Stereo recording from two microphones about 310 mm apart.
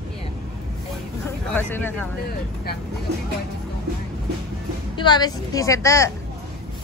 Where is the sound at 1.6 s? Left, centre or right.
Centre.